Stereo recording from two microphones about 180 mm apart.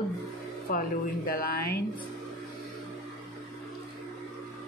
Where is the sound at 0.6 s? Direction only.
50° left (ahead or behind).